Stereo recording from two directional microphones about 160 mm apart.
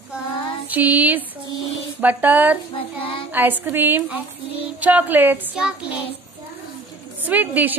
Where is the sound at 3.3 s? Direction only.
10° right (ahead or behind).